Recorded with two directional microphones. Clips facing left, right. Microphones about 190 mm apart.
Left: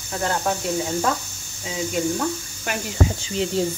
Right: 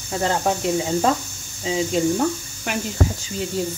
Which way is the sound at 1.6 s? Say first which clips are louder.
Right 4 dB; 25° right (ahead or behind).